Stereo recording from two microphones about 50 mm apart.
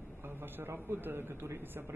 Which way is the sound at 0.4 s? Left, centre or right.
Right.